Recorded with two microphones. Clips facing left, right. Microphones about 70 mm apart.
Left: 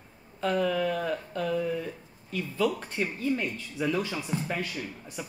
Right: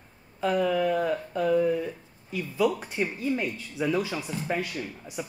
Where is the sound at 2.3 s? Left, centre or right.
Centre.